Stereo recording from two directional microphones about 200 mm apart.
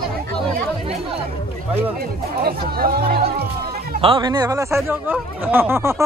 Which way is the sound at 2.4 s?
50° right (ahead or behind).